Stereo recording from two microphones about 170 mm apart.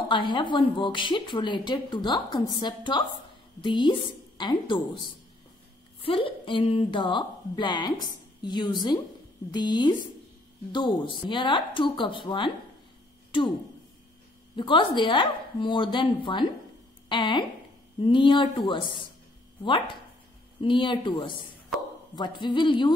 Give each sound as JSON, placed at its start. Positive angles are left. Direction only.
{"t": 0.1, "sound": "a woman's voice", "side_deg": 25}
{"t": 14.5, "sound": "a woman's voice", "side_deg": 30}